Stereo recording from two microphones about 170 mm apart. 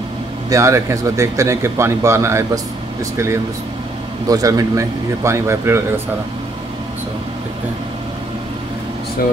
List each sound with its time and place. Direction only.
0.5 s speech: 15° right (ahead or behind)
4.3 s speech: 20° right (ahead or behind)